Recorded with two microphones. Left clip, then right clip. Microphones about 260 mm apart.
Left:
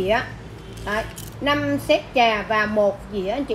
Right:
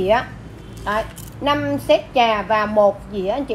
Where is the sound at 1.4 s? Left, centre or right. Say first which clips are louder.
Right 2 dB; centre.